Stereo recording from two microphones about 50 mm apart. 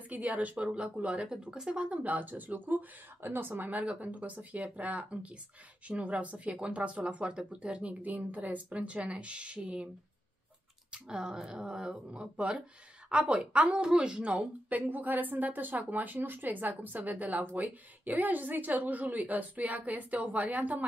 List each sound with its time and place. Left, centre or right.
0.1 s a woman's voice: right
10.9 s a woman's voice: centre